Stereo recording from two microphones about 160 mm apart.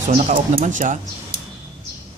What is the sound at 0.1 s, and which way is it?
Speech, 60° right (ahead or behind).